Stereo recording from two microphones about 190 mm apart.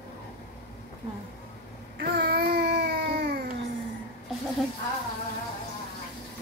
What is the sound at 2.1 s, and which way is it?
Baby cry, 55° right (ahead or behind).